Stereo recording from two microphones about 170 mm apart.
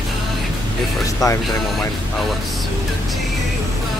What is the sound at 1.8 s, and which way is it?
Speech, centre (ahead or behind).